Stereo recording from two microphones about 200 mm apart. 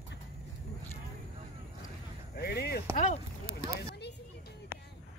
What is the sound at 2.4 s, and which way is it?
Speech, 50° left (ahead or behind).